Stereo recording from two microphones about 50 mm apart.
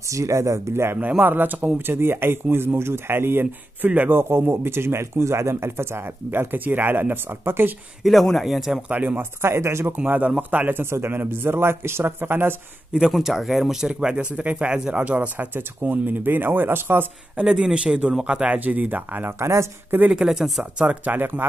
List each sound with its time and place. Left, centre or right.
0.1 s speech: right
1.2 s speech: right
4.2 s speech: right
8.0 s a man's voice: centre
8.8 s a man's voice: right
9.4 s speech: right
9.9 s speech: right
10.8 s speech: right
13.1 s speech: centre; by 15.2 s right
15.3 s speech: right
17.5 s a man's voice: centre; by 19.3 s right
19.4 s speech: right
20.1 s speech: centre
20.8 s speech: right